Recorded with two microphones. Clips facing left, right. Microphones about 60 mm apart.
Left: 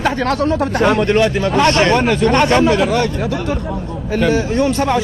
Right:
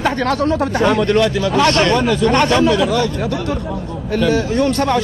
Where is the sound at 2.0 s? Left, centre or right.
Left.